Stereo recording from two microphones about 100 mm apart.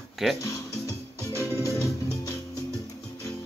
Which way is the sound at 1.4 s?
30° left (ahead or behind).